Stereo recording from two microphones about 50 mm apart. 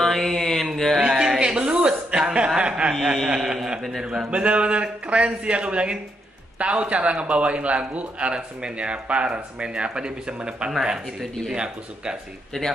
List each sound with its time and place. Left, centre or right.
0.0 s mantra: centre
0.9 s chuckle: centre
2.9 s a man's voice: centre
12.5 s speech: centre